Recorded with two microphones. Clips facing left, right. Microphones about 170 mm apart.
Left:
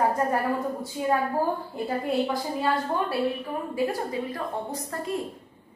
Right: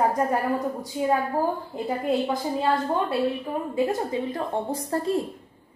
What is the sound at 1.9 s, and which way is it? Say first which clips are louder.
A woman's voice: right 2 dB; 15° right (ahead or behind).